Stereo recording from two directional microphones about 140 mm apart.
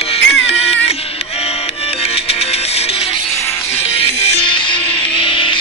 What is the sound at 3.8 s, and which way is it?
Music, 45° left (ahead or behind).